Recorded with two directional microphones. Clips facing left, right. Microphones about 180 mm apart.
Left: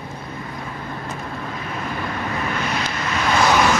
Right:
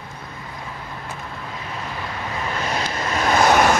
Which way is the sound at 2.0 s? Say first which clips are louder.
Left 3 dB; 30° right (ahead or behind).